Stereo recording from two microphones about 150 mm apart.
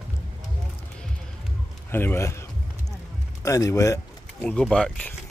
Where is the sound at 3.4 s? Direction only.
20° left (ahead or behind).